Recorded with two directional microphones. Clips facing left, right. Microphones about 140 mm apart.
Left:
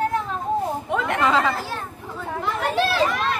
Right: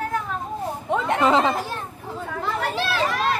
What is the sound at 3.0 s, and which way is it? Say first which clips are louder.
Run: right 1 dB; 35° right (ahead or behind).